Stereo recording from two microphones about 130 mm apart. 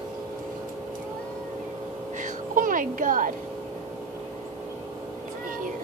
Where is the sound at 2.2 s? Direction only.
90° right.